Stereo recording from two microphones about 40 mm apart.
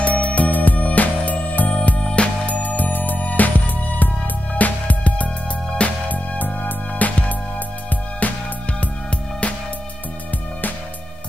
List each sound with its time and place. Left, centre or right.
0.0 s music: left
2.4 s music: left
8.2 s music: left